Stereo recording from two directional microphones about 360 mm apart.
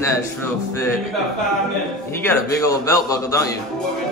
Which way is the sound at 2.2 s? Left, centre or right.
Centre.